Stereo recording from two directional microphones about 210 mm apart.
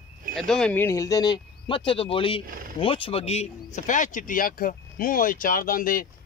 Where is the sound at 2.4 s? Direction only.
40° right (ahead or behind).